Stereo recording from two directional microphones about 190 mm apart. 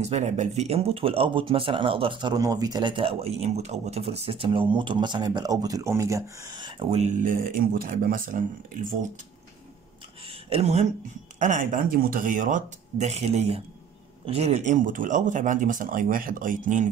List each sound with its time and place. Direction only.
0.0 s speech: 40° right (ahead or behind)
10.2 s a sound: 35° right (ahead or behind)
11.3 s speech: 40° right (ahead or behind)